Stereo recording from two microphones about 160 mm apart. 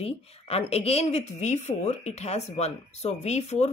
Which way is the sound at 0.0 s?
40° left (ahead or behind).